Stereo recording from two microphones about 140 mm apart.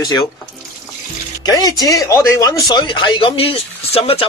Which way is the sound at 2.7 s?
35° left (ahead or behind).